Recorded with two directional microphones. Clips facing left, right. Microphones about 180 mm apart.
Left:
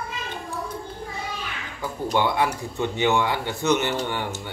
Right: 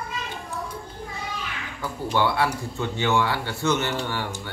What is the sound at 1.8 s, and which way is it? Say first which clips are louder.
Speech: left 1 dB; 15° left (ahead or behind).